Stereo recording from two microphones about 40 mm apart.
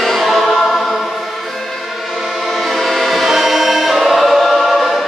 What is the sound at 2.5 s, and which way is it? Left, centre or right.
Train, centre.